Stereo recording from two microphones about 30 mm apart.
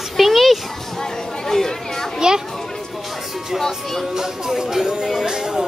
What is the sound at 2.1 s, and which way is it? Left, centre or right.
Speech, right.